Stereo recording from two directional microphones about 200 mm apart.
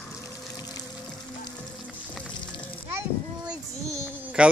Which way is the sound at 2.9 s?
15° right (ahead or behind).